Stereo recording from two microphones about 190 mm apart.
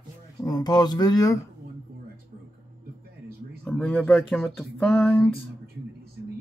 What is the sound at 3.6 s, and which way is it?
Speech, 5° left (ahead or behind).